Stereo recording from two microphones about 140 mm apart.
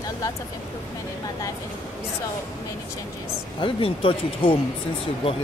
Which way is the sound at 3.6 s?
40° left (ahead or behind).